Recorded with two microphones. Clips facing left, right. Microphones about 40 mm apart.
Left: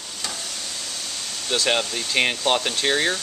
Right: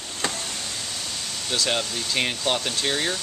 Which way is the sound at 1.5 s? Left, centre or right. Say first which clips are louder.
Left 3 dB; centre.